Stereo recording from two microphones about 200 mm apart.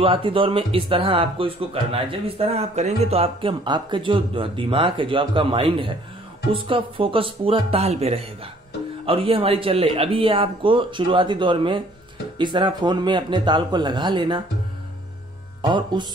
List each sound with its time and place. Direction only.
0.0 s speech: 25° right (ahead or behind)
15.6 s speech: 20° right (ahead or behind)